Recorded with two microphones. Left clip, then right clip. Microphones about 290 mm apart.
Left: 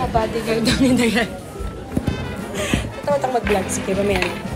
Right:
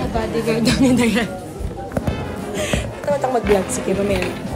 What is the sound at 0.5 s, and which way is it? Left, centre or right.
Speech, centre.